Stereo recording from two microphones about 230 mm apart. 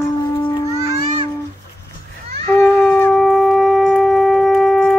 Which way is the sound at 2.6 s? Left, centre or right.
Centre.